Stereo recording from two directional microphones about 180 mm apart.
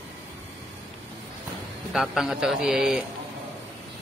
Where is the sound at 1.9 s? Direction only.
Centre (ahead or behind).